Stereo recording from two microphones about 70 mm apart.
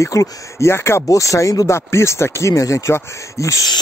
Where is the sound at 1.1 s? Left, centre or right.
Left.